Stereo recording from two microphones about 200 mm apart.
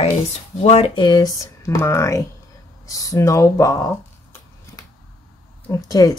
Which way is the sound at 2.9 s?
15° left (ahead or behind).